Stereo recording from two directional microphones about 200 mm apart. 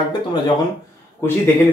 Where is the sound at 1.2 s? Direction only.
10° left (ahead or behind).